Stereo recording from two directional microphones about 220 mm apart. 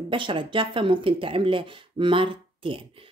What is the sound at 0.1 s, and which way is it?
A woman's voice, 20° right (ahead or behind).